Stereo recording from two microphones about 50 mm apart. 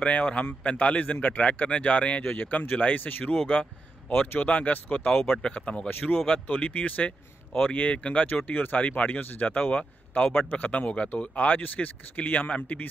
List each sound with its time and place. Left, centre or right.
0.0 s speech: left
5.9 s speech: left
8.4 s speech: left